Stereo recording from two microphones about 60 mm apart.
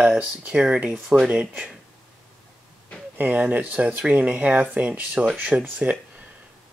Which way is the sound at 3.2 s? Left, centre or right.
Right.